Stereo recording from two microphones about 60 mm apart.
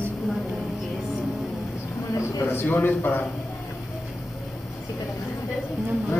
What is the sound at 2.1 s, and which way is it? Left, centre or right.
Speech, left.